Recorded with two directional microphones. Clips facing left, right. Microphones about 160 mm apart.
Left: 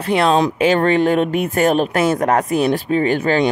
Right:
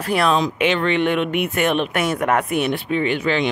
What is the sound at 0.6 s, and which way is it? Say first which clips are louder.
Speech: left 4 dB; 40° left (ahead or behind).